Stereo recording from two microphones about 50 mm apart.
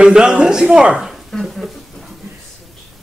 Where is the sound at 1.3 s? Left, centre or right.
Centre.